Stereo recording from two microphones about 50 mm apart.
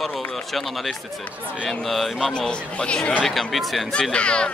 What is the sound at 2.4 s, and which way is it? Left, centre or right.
Speech, centre.